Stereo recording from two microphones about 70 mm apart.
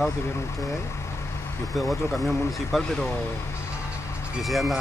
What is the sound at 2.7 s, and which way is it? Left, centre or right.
Speech, centre.